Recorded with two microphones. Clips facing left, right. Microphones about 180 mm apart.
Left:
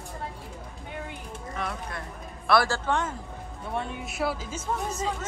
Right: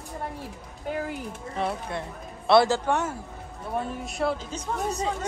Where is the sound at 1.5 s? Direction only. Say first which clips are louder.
Right 5 dB; 30° right (ahead or behind); by 3.2 s 10° right (ahead or behind).